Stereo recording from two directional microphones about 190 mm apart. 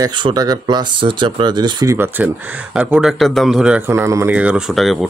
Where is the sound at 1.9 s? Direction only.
10° right (ahead or behind).